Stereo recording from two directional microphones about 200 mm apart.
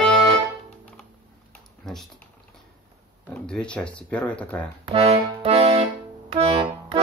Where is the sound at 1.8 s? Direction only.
Centre (ahead or behind).